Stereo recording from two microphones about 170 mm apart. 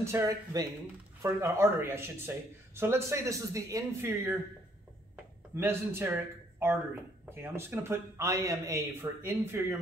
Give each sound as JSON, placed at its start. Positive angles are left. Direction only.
{"t": 0.0, "sound": "speech", "side_deg": -15}